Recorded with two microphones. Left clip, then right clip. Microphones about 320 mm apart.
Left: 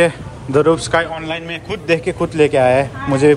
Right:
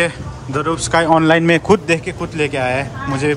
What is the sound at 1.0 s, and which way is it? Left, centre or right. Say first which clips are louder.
Speech: right 12 dB; right.